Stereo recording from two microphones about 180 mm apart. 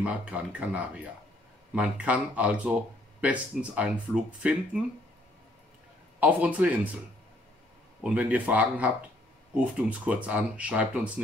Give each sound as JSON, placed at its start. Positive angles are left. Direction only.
{"t": 0.0, "sound": "speech", "side_deg": -5}
{"t": 6.1, "sound": "speech", "side_deg": -10}
{"t": 8.0, "sound": "speech", "side_deg": -10}